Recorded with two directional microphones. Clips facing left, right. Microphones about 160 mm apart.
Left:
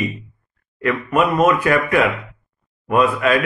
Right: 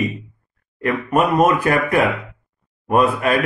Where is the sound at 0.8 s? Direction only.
35° right (ahead or behind).